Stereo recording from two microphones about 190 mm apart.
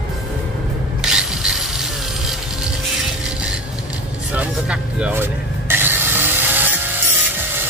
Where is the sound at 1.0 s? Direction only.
5° right (ahead or behind).